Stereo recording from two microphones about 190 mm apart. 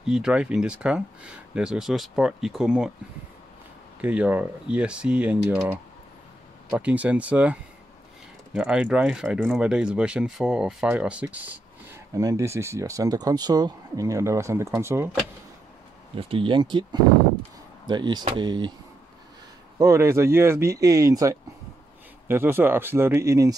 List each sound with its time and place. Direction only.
0.0 s speech: 5° right (ahead or behind)
4.0 s speech: 5° right (ahead or behind)
6.7 s speech: 5° right (ahead or behind)
8.5 s speech: 5° right (ahead or behind)
16.2 s speech: 30° right (ahead or behind)
19.8 s speech: 15° right (ahead or behind)